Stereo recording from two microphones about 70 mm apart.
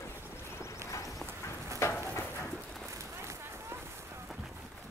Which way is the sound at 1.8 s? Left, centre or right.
Left.